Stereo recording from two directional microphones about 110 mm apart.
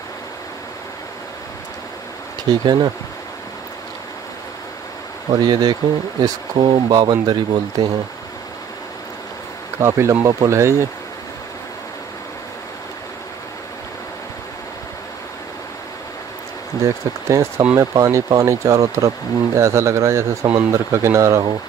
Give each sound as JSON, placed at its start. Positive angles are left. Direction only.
{"t": 2.6, "sound": "speech", "side_deg": -40}
{"t": 5.3, "sound": "speech", "side_deg": -35}
{"t": 9.8, "sound": "speech", "side_deg": -25}
{"t": 16.8, "sound": "speech", "side_deg": -25}